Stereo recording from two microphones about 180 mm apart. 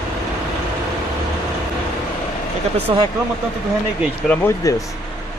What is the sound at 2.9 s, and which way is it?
Speech, 30° right (ahead or behind).